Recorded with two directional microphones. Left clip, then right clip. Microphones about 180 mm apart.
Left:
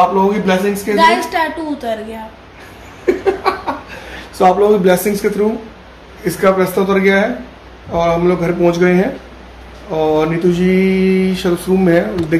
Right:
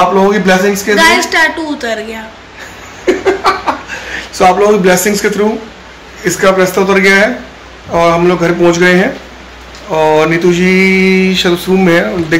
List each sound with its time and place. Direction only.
0.3 s speech: 20° right (ahead or behind)
0.9 s a woman's voice: 10° left (ahead or behind)
4.4 s mantra: 5° right (ahead or behind)
6.2 s speech: 5° right (ahead or behind)
9.9 s mantra: 5° right (ahead or behind)